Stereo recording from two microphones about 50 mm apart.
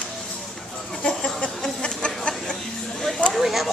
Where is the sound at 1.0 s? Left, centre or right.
Centre.